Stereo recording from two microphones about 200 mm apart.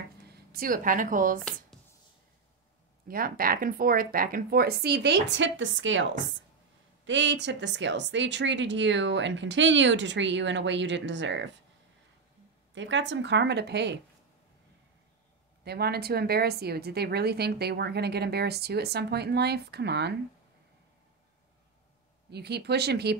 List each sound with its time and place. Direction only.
0.5 s speech: 45° right (ahead or behind)
3.1 s speech: 45° right (ahead or behind); by 6.0 s 70° right (ahead or behind)
7.1 s speech: 65° right (ahead or behind)
12.7 s speech: 65° right (ahead or behind)
15.6 s speech: 55° right (ahead or behind)
22.3 s speech: 55° right (ahead or behind)